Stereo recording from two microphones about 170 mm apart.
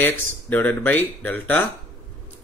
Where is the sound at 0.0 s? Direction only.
10° left (ahead or behind).